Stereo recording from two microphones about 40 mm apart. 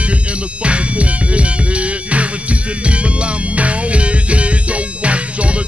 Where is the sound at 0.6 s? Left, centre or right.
Right.